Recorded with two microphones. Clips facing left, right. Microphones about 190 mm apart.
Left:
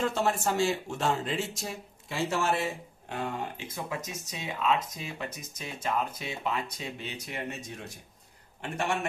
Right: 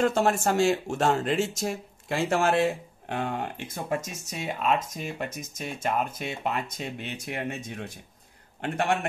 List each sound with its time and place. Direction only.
0.0 s a man's voice: 50° right (ahead or behind)